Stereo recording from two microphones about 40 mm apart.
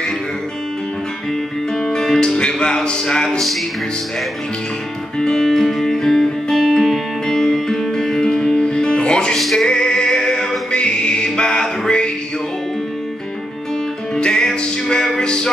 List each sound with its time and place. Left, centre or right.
1.9 s music: centre
5.2 s music: centre
9.4 s music: centre
9.7 s music: left
14.1 s music: left